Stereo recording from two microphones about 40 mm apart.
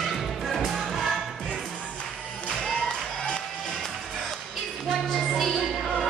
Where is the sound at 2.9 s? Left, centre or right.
Left.